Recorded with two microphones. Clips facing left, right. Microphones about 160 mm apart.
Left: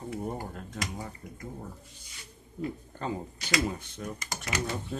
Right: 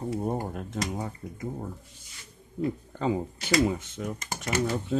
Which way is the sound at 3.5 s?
20° right (ahead or behind).